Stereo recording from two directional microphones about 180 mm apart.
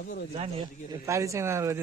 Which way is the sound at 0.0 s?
65° left (ahead or behind).